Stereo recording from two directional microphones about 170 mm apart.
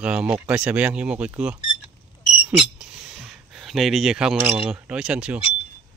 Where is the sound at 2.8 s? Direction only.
5° right (ahead or behind).